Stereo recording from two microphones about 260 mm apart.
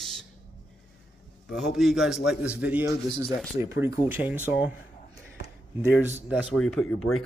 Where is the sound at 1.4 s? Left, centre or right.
Centre.